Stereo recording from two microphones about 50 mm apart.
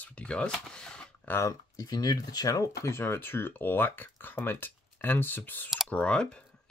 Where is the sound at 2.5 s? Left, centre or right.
Left.